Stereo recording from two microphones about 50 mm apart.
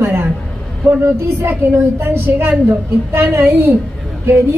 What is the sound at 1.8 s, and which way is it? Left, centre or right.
A woman's voice, right.